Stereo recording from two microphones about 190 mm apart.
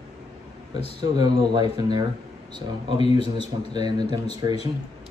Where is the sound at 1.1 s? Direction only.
20° right (ahead or behind).